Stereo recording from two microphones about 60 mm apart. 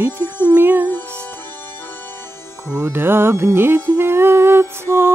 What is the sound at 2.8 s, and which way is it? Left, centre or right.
Music, right.